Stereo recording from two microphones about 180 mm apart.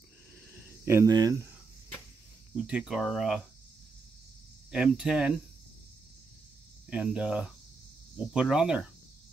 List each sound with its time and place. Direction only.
0.8 s speech: 15° right (ahead or behind)
2.5 s cricket: 5° right (ahead or behind)
4.6 s cricket: 5° right (ahead or behind)
6.9 s cricket: 5° right (ahead or behind)